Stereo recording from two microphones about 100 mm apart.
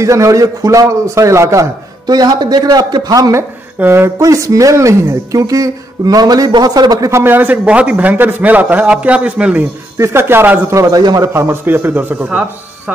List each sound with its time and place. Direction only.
0.0 s a woman's voice: 30° right (ahead or behind)
2.0 s a man's voice: 45° right (ahead or behind)
3.8 s speech: 20° right (ahead or behind)
4.2 s a woman's voice: 35° right (ahead or behind)
7.1 s a man's voice: 25° right (ahead or behind)
9.9 s speech: 25° right (ahead or behind)
10.7 s a woman's voice: 35° right (ahead or behind)
11.3 s speech: 25° right (ahead or behind)